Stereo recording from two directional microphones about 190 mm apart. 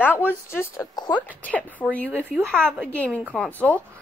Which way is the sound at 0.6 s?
20° left (ahead or behind).